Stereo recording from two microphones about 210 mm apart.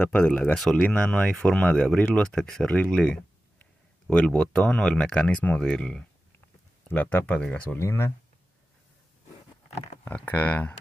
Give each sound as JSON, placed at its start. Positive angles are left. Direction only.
{"t": 0.0, "sound": "speech", "side_deg": 5}
{"t": 10.0, "sound": "speech", "side_deg": 10}